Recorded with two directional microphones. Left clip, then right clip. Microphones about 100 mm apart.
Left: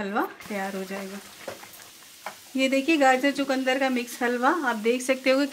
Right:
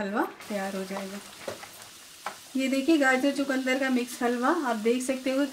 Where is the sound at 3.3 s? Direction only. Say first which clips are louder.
Left 3 dB; 30° left (ahead or behind).